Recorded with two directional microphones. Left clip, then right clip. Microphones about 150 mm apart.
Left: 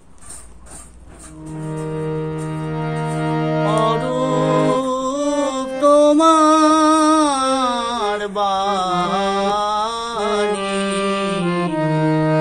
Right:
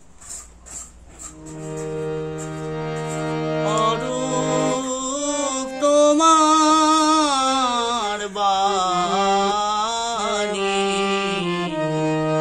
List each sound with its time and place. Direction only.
1.8 s organ: 35° left (ahead or behind)
4.8 s music: 5° right (ahead or behind)
10.5 s music: 35° left (ahead or behind)